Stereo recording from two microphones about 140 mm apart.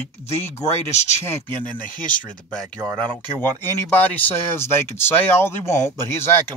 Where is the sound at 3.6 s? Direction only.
15° left (ahead or behind).